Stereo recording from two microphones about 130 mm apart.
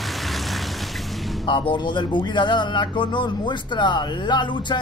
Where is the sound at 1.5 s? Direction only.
40° left (ahead or behind).